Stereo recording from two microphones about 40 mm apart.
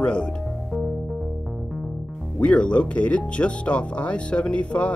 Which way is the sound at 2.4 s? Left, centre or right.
Left.